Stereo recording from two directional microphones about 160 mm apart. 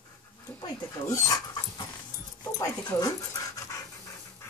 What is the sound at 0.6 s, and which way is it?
Speech, 20° left (ahead or behind).